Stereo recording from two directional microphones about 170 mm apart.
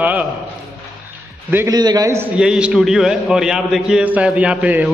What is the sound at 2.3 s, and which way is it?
A man's voice, 5° right (ahead or behind).